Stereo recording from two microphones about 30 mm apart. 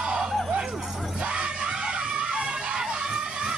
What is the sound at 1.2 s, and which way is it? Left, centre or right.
Music, right.